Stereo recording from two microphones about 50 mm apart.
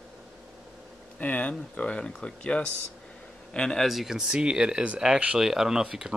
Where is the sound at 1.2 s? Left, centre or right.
Left; by 3.8 s centre.